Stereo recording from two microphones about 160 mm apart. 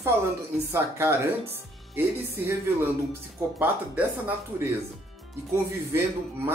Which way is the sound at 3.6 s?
10° right (ahead or behind).